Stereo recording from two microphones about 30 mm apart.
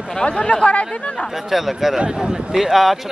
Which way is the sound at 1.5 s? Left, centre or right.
Centre.